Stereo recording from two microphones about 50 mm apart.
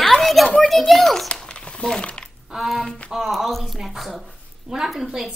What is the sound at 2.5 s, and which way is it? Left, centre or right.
A child's voice, centre.